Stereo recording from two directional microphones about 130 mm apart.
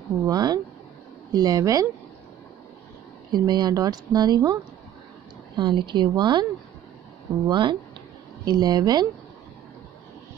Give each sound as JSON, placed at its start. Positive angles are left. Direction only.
{"t": 0.2, "sound": "speech", "side_deg": -30}
{"t": 3.3, "sound": "speech", "side_deg": -35}
{"t": 5.6, "sound": "speech", "side_deg": -35}
{"t": 7.4, "sound": "speech", "side_deg": -40}